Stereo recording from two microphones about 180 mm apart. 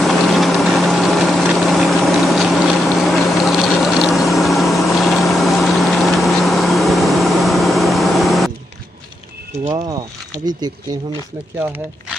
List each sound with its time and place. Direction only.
0.0 s vehicle: centre (ahead or behind)
9.8 s a sound: 20° right (ahead or behind)
11.6 s speech: 10° right (ahead or behind)